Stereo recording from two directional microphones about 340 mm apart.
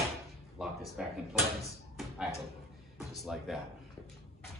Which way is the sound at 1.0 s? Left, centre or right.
Centre.